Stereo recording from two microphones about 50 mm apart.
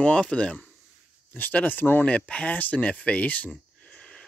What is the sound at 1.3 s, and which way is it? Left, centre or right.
Speech, left.